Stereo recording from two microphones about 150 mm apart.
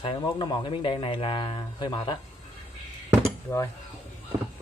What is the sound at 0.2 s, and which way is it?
Speech, 30° left (ahead or behind).